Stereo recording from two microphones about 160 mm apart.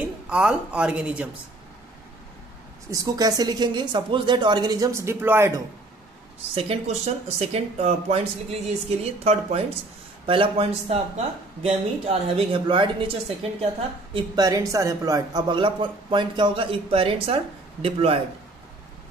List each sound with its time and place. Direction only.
0.0 s a woman's voice: 5° right (ahead or behind)
2.9 s a man's voice: 20° right (ahead or behind)
6.5 s speech: 40° right (ahead or behind)
14.1 s a man's voice: 25° right (ahead or behind)